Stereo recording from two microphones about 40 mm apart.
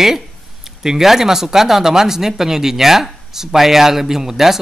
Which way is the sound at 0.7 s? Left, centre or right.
Centre.